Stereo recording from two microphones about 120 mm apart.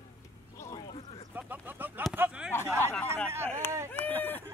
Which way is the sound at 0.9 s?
50° left (ahead or behind).